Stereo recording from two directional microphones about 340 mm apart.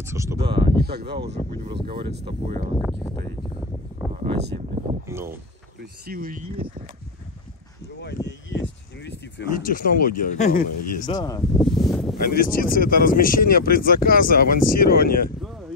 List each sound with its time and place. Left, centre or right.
0.0 s speech: centre
0.5 s speech: right
1.3 s speech: centre
4.1 s a sound: right
5.0 s speech: centre
5.8 s speech: right
8.3 s a sound: left
10.0 s speech: left; by 12.2 s centre
12.2 s speech: left